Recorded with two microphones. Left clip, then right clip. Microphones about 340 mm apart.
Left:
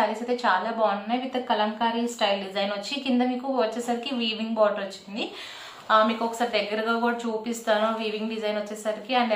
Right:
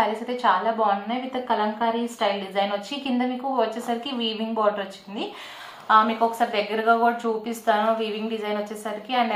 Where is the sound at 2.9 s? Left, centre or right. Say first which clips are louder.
Left 1 dB; centre.